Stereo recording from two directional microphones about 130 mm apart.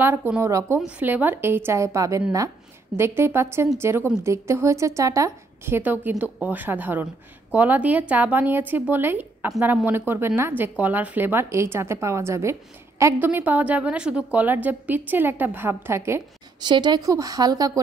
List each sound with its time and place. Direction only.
0.0 s a woman's voice: 15° right (ahead or behind)
0.7 s a woman's voice: 10° right (ahead or behind)
16.6 s a woman's voice: 35° right (ahead or behind)